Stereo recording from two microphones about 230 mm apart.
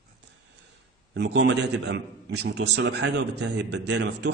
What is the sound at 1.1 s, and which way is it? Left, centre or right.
A man's voice, right.